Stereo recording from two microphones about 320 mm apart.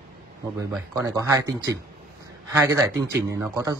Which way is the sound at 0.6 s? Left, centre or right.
Centre.